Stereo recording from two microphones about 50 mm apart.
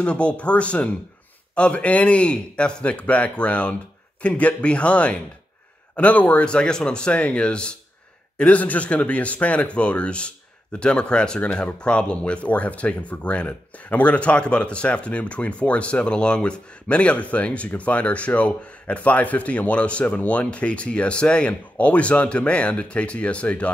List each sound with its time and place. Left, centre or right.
0.0 s speech: left
6.4 s speech: centre